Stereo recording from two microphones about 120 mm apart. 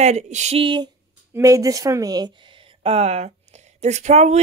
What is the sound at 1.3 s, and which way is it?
Speech, 25° right (ahead or behind).